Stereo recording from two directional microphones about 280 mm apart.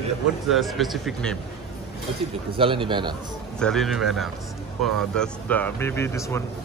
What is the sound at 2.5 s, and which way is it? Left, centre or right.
Speech, centre.